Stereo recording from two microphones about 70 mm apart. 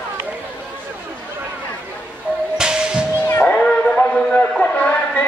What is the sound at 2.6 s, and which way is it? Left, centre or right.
Music, centre.